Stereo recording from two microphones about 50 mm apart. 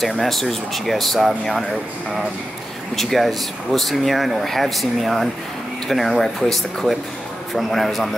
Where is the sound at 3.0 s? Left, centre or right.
Centre.